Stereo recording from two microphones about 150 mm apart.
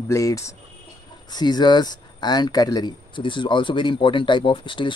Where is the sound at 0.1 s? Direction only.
20° left (ahead or behind).